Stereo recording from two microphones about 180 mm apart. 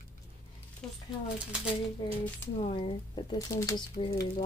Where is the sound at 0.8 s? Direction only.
5° left (ahead or behind).